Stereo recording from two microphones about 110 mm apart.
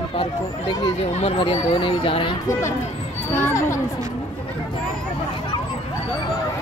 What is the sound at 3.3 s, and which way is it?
Speech, 25° left (ahead or behind).